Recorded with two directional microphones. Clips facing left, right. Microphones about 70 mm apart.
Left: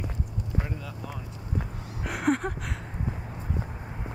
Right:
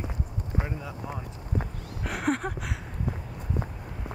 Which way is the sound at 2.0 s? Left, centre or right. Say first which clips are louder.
Left 2 dB; centre.